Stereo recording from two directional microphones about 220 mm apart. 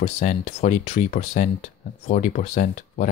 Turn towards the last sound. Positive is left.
turn(degrees=35)  # may be behind; listen again after turning